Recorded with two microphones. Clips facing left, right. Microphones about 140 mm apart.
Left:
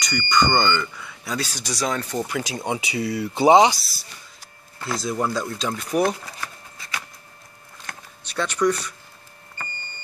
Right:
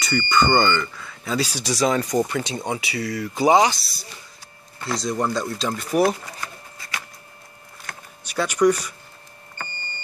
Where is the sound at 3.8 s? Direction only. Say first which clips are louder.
Right 2 dB; centre (ahead or behind).